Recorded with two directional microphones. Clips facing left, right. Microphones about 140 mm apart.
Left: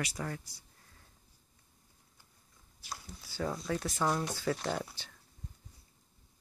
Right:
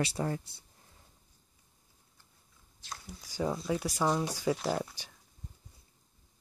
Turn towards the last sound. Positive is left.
turn(degrees=-10)  # may be behind; listen again after turning